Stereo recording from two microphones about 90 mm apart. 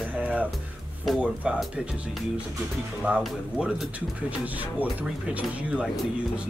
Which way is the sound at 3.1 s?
10° right (ahead or behind).